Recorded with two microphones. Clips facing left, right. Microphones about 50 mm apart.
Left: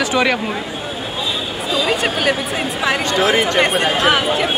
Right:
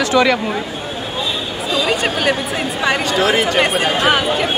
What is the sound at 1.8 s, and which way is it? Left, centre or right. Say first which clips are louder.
Speech: even; centre.